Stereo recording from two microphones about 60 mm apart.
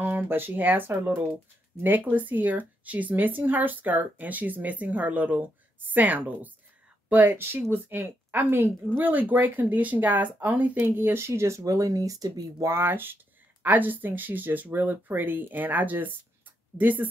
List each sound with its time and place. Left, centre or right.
0.0 s speech: right
11.0 s speech: right
11.6 s speech: right
12.6 s speech: right